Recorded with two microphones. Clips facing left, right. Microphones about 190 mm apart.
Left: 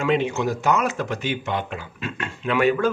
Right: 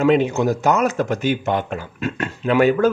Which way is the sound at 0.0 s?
40° right (ahead or behind).